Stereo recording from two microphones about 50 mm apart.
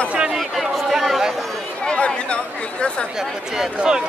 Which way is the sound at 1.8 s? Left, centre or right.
Left.